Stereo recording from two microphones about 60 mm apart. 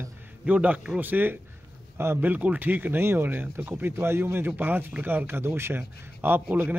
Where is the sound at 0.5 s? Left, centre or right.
Right.